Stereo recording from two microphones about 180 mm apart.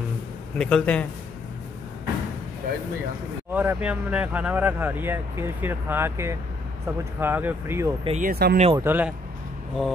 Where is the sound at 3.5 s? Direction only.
10° right (ahead or behind).